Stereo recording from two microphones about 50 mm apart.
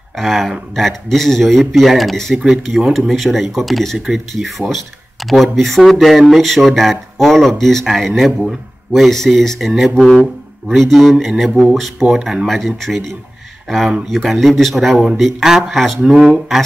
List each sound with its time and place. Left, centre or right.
0.1 s speech: centre
9.7 s speech: centre
9.9 s speech: centre
16.0 s speech: centre